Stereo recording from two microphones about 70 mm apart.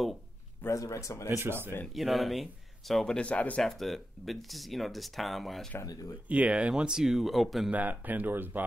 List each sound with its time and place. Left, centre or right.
0.7 s speech: left
1.3 s speech: right
2.0 s speech: centre
3.2 s speech: centre
3.6 s speech: centre
6.2 s speech: centre
7.7 s speech: right